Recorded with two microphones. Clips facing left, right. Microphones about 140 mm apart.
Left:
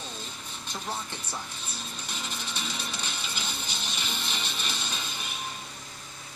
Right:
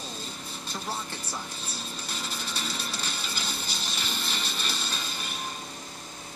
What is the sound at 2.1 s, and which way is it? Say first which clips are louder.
Music: right 1 dB; 35° right (ahead or behind).